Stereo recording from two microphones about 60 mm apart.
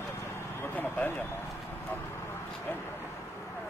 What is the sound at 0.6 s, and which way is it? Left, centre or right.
Vehicle, left.